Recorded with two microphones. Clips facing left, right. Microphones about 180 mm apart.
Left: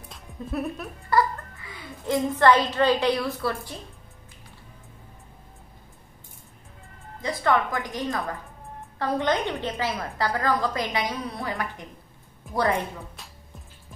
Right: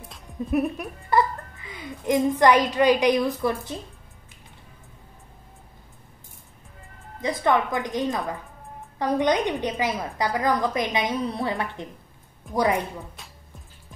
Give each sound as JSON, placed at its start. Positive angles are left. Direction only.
{"t": 0.5, "sound": "speech", "side_deg": -15}
{"t": 7.2, "sound": "a woman's voice", "side_deg": -20}
{"t": 12.5, "sound": "music", "side_deg": 0}